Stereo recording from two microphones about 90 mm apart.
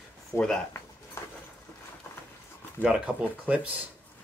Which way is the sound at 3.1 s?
10° right (ahead or behind).